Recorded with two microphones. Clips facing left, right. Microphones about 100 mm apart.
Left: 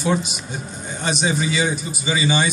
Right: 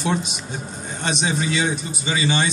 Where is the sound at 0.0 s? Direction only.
Centre (ahead or behind).